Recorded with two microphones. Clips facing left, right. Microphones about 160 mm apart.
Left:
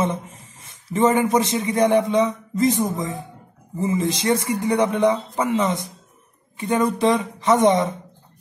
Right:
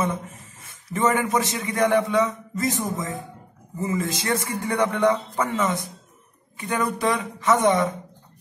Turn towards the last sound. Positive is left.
turn(degrees=20)  # may be behind; listen again after turning